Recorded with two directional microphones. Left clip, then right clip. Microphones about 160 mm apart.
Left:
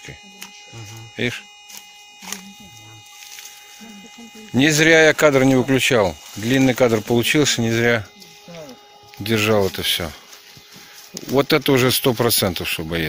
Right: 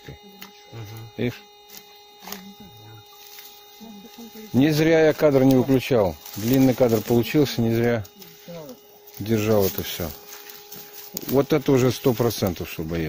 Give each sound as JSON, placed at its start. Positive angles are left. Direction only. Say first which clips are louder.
{"t": 1.1, "sound": "speech", "louder": "left 5 dB", "side_deg": -5}
{"t": 2.3, "sound": "speech", "louder": "left 5 dB", "side_deg": -50}
{"t": 4.6, "sound": "speech", "louder": "left 5 dB", "side_deg": 0}
{"t": 9.2, "sound": "speech", "louder": "left 3 dB", "side_deg": 0}
{"t": 11.3, "sound": "speech", "louder": "left 3 dB", "side_deg": 0}